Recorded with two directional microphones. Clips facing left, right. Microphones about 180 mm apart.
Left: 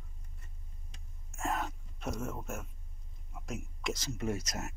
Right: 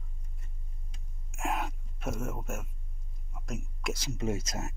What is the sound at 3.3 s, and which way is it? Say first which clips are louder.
Hiccup: right 1 dB; centre (ahead or behind).